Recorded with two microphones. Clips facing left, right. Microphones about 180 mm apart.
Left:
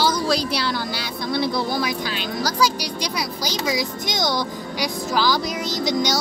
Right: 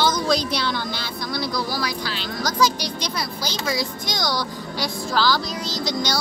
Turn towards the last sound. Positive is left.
turn(degrees=20)  # may be behind; listen again after turning